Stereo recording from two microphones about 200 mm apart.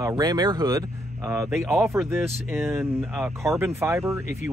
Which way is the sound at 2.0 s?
10° right (ahead or behind).